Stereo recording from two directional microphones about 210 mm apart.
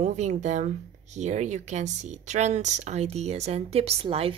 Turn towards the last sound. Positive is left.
turn(degrees=-30)  # may be behind; listen again after turning